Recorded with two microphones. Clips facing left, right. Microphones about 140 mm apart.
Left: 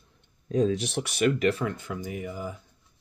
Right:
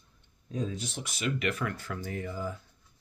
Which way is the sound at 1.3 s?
30° left (ahead or behind).